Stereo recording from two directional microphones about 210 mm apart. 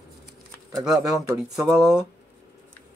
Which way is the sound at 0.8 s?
20° right (ahead or behind).